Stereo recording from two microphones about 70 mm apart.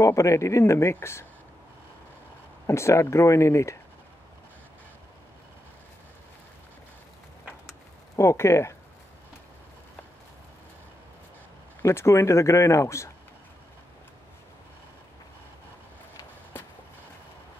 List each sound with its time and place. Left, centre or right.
0.0 s speech: left
2.6 s speech: left
8.2 s speech: left
11.8 s speech: left
16.5 s vehicle: left